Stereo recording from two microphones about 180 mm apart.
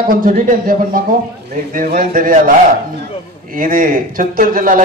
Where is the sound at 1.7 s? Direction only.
50° right (ahead or behind).